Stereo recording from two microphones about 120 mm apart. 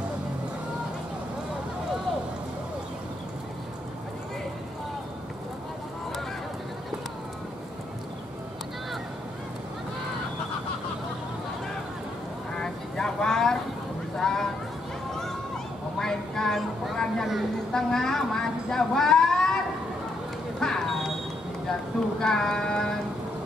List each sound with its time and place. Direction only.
12.5 s vehicle: 5° left (ahead or behind)
14.1 s a sound: 5° left (ahead or behind)
20.5 s vehicle: 5° left (ahead or behind)
22.2 s music: 5° left (ahead or behind)